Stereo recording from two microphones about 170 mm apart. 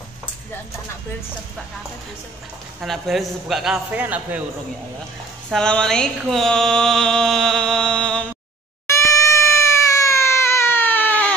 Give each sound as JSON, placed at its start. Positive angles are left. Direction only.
{"t": 2.8, "sound": "mantra", "side_deg": 0}
{"t": 5.5, "sound": "mantra", "side_deg": 5}
{"t": 8.8, "sound": "cat", "side_deg": 15}